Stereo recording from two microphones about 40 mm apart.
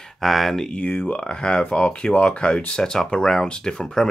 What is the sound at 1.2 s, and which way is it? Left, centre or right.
Speech, left.